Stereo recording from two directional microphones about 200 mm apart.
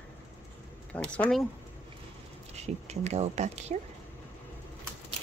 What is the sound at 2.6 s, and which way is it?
Speech, 35° right (ahead or behind).